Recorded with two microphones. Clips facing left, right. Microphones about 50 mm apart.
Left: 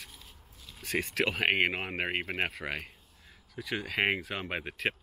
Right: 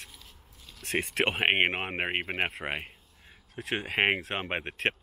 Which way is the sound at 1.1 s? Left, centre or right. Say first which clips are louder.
Right 2 dB; right.